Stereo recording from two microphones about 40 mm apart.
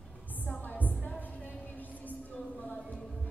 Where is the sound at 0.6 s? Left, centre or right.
Left.